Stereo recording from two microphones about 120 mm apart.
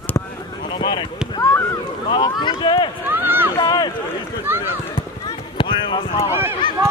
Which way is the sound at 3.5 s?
35° left (ahead or behind).